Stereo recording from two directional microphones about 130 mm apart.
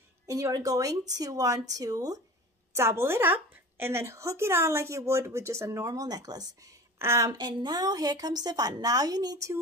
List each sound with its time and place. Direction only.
0.3 s a woman's voice: 25° right (ahead or behind)